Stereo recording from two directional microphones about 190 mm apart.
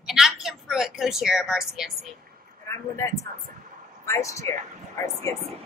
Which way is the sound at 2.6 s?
15° left (ahead or behind).